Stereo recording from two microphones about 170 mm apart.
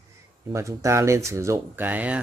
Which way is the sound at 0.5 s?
15° right (ahead or behind).